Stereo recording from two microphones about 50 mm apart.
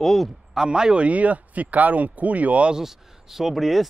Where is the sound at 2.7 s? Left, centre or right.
Centre.